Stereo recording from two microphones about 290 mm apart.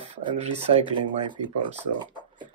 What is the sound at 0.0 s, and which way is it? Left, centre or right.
Speech, right.